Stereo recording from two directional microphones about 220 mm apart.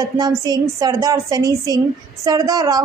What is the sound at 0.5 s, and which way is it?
A woman's voice, 15° right (ahead or behind).